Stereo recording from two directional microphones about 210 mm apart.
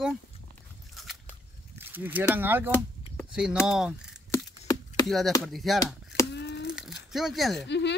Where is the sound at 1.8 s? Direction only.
10° right (ahead or behind).